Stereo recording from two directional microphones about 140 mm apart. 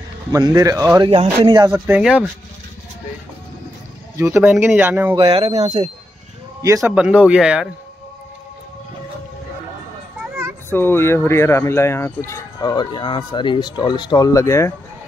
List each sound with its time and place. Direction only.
0.3 s speech: 25° right (ahead or behind)
1.0 s speech: 35° right (ahead or behind)
1.7 s speech: 10° right (ahead or behind)
4.2 s speech: 15° right (ahead or behind)
5.1 s speech: 40° right (ahead or behind)
6.6 s speech: 20° right (ahead or behind)
7.0 s speech: 5° right (ahead or behind)
10.7 s speech: 15° left (ahead or behind)